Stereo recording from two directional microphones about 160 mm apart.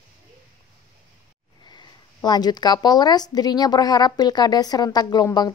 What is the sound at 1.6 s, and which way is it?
Speech, 25° left (ahead or behind).